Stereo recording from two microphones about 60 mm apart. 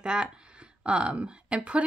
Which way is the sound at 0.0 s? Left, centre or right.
Centre.